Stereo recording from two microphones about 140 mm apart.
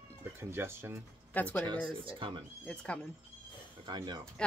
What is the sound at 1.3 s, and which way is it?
Speech, 10° left (ahead or behind).